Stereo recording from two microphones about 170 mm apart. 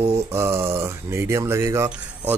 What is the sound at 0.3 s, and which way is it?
Speech, 15° right (ahead or behind).